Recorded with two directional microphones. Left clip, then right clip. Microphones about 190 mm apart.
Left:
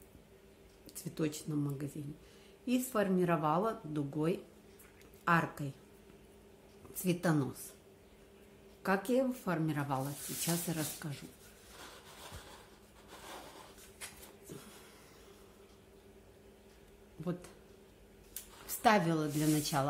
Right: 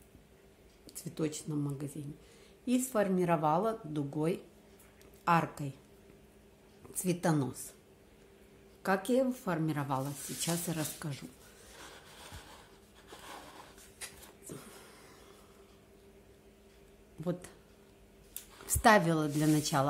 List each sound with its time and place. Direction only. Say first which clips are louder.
0.8 s speech: right 1 dB; 10° right (ahead or behind)
7.0 s speech: right 1 dB; 15° right (ahead or behind)
8.8 s speech: right 2 dB; 15° right (ahead or behind)
14.5 s a sound: right 3 dB; 25° right (ahead or behind)
17.2 s speech: right 4 dB; 20° right (ahead or behind)
18.7 s a woman's voice: right 4 dB; 25° right (ahead or behind)